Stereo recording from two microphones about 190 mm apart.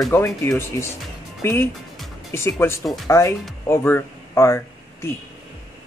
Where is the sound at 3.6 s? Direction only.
15° left (ahead or behind).